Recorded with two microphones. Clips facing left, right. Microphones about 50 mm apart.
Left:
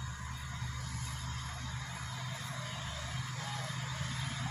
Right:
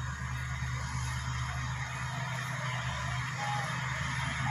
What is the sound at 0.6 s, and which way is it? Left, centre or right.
Vehicle, right.